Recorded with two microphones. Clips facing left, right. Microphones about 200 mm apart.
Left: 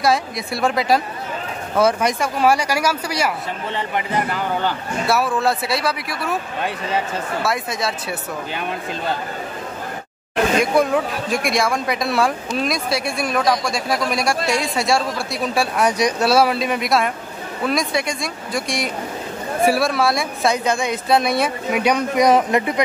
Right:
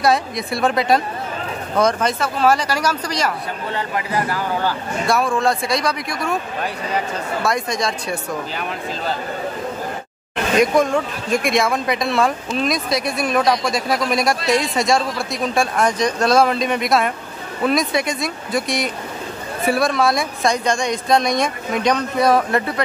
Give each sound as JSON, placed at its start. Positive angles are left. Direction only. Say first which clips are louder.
{"t": 0.0, "sound": "speech", "louder": "right 1 dB", "side_deg": 0}
{"t": 3.7, "sound": "speech", "louder": "even", "side_deg": 20}
{"t": 5.0, "sound": "speech", "louder": "right 1 dB", "side_deg": 5}
{"t": 7.4, "sound": "speech", "louder": "right 4 dB", "side_deg": 5}
{"t": 10.8, "sound": "speech", "louder": "even", "side_deg": 0}
{"t": 19.6, "sound": "speech", "louder": "even", "side_deg": 0}